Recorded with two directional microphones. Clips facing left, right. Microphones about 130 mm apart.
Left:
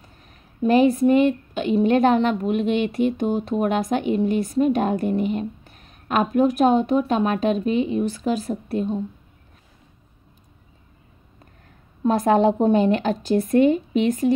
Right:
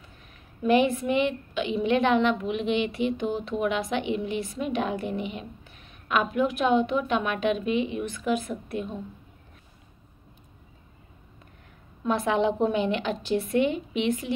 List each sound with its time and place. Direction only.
0.0 s speech: 40° left (ahead or behind)
12.0 s a woman's voice: 40° left (ahead or behind)